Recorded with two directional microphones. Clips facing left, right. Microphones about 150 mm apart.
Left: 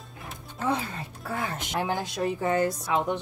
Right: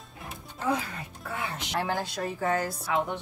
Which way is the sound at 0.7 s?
30° left (ahead or behind).